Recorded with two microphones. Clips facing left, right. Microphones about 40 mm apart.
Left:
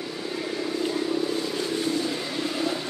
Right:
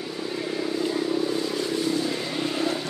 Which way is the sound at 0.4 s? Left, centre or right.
Centre.